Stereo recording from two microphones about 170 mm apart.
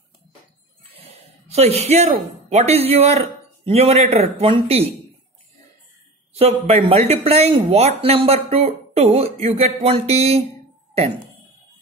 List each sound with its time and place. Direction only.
0.9 s speech: 40° right (ahead or behind)
6.7 s speech: 35° right (ahead or behind)